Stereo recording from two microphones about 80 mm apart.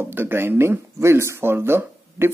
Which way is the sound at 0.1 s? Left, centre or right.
Right.